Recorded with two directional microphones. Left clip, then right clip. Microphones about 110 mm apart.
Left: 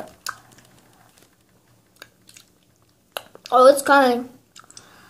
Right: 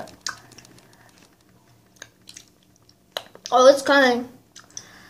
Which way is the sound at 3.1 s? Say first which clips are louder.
Left 2 dB; 30° left (ahead or behind).